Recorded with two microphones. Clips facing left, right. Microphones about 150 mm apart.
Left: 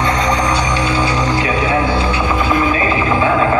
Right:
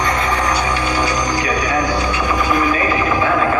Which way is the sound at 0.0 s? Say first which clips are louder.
Left 2 dB; 25° left (ahead or behind).